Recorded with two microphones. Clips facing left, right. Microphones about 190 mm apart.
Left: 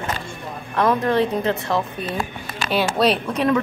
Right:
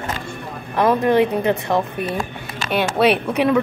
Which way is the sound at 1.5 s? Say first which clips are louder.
Right 3 dB; 60° right (ahead or behind).